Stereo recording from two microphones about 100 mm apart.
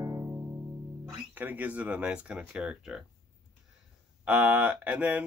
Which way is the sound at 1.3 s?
15° right (ahead or behind).